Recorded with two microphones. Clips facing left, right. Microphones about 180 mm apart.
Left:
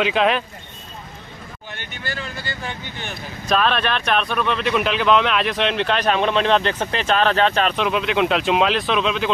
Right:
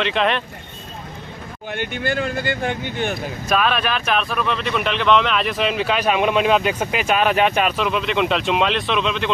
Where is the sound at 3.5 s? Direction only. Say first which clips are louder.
Left 1 dB; 5° right (ahead or behind).